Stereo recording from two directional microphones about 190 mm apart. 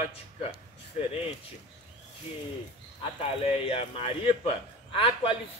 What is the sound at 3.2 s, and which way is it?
A man's voice, 30° left (ahead or behind).